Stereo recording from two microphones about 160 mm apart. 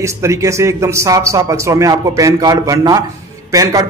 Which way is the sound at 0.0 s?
20° right (ahead or behind).